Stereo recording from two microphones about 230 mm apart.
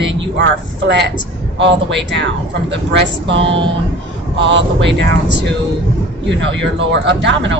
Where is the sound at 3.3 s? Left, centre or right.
Right.